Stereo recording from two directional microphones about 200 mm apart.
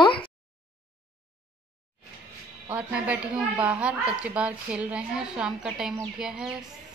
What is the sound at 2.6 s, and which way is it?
A woman's voice, 5° right (ahead or behind).